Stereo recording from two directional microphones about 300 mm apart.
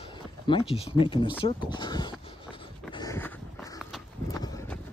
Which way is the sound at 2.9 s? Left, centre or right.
Centre.